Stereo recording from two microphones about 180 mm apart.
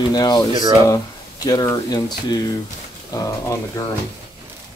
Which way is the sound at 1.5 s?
20° left (ahead or behind).